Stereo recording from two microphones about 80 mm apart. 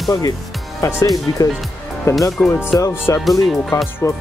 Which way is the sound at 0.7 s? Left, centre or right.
Left.